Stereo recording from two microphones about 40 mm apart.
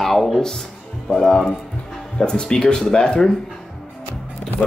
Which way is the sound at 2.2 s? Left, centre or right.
Centre.